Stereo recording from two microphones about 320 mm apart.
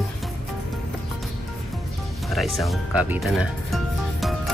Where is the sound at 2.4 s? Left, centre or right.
Centre.